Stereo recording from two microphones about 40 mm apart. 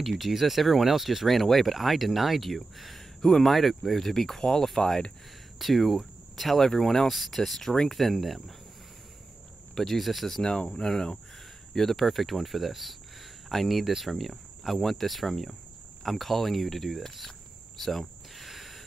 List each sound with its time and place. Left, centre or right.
0.3 s speech: centre
4.4 s speech: centre
9.8 s speech: centre
10.4 s speech: centre
17.7 s cricket: centre